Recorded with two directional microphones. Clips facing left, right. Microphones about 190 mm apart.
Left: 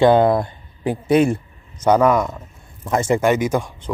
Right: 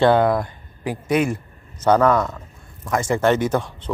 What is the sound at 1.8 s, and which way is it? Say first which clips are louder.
Speech: left 1 dB; 15° left (ahead or behind).